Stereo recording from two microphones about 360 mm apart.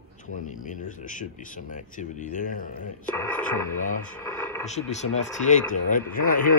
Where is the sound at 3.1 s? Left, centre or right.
Centre.